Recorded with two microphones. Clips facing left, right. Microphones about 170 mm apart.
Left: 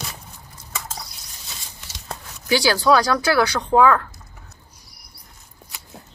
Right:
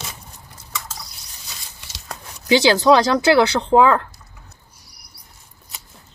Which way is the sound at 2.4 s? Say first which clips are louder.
Right 4 dB; 20° right (ahead or behind).